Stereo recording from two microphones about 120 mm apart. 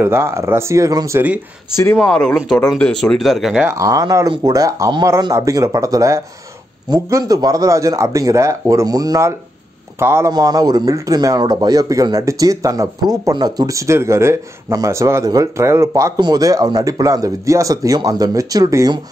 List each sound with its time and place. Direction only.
0.0 s speech: 20° right (ahead or behind)
2.0 s speech: 10° left (ahead or behind)
3.5 s speech: 25° right (ahead or behind)
10.3 s a man's voice: 30° right (ahead or behind)